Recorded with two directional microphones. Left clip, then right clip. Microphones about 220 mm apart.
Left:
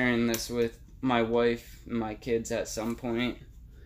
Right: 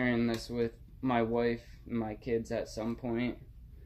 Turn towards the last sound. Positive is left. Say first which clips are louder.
# left 4 dB
turn(degrees=15)  # may be behind; listen again after turning